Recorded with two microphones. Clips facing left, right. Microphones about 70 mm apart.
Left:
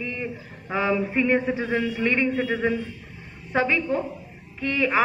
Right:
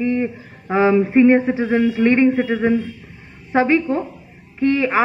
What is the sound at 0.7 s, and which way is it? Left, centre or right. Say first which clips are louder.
A man's voice: right 9 dB; right.